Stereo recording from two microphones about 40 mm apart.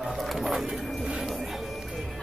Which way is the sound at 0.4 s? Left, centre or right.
Centre.